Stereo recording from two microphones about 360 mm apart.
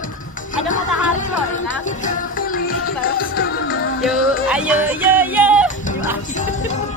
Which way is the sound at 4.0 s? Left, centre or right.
Centre.